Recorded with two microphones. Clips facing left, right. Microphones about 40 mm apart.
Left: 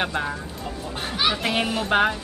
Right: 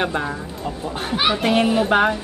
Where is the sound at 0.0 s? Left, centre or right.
Centre.